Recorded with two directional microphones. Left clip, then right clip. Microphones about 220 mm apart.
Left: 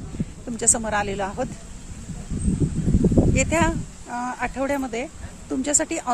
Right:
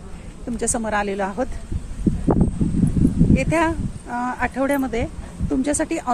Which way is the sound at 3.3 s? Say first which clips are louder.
Right 1 dB; 10° left (ahead or behind).